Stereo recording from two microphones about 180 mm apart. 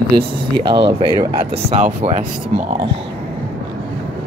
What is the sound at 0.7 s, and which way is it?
Speech, 25° right (ahead or behind).